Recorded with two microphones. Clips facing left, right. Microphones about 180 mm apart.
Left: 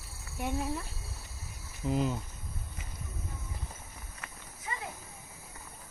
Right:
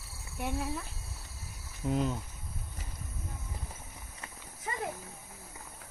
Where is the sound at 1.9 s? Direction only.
Centre (ahead or behind).